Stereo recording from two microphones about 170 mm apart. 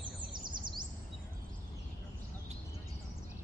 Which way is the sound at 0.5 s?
25° right (ahead or behind).